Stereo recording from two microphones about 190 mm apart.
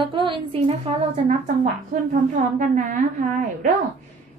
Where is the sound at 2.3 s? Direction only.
40° right (ahead or behind).